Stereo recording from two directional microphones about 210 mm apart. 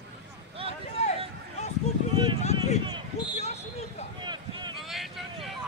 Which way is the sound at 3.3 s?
30° left (ahead or behind).